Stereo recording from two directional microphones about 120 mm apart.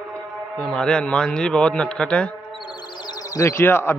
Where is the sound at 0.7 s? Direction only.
5° left (ahead or behind).